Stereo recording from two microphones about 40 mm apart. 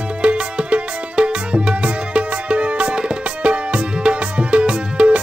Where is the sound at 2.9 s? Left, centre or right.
Right.